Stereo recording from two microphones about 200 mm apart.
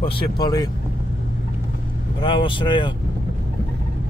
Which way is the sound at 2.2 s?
25° left (ahead or behind).